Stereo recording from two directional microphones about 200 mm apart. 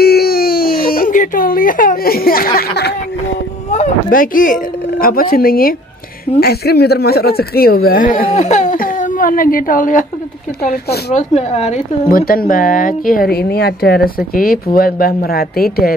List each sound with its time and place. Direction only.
0.0 s baby cry: 50° left (ahead or behind)
3.7 s speech: 45° left (ahead or behind)
10.7 s speech: 55° left (ahead or behind)
11.1 s speech: 30° left (ahead or behind)
12.1 s speech: 45° left (ahead or behind)